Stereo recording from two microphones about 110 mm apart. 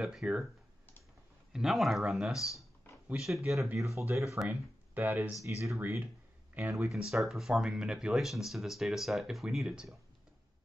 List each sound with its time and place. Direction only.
0.0 s speech: 5° right (ahead or behind)
1.5 s speech: centre (ahead or behind)
2.9 s a sound: 20° left (ahead or behind)
3.2 s speech: 5° right (ahead or behind)
3.7 s speech: 25° right (ahead or behind)
4.5 s speech: 15° right (ahead or behind)
5.4 s speech: 25° right (ahead or behind)
6.9 s speech: centre (ahead or behind)